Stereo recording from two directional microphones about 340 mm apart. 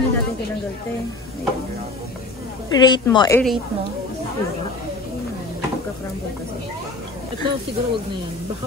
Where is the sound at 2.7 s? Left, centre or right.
Centre.